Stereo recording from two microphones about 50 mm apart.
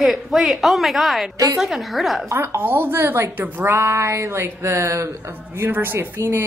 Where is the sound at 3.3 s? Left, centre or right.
Right.